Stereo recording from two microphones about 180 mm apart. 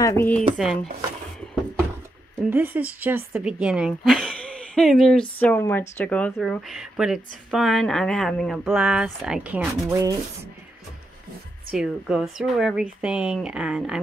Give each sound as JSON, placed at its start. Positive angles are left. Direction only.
{"t": 0.0, "sound": "speech", "side_deg": 15}
{"t": 2.5, "sound": "speech", "side_deg": -10}
{"t": 9.8, "sound": "speech", "side_deg": -15}
{"t": 11.7, "sound": "speech", "side_deg": -5}